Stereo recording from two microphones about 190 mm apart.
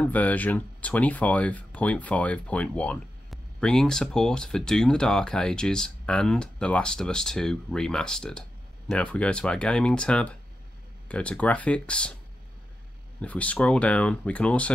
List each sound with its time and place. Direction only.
0.0 s speech: 10° left (ahead or behind)
13.2 s speech: 5° left (ahead or behind)